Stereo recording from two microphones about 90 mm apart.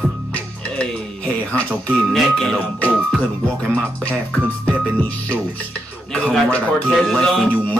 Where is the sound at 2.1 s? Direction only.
5° left (ahead or behind).